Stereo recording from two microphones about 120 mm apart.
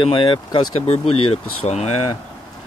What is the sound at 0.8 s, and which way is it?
Speech, 60° left (ahead or behind).